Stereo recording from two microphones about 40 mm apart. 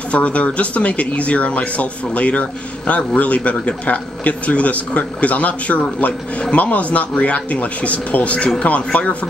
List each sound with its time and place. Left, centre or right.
0.1 s a man's voice: left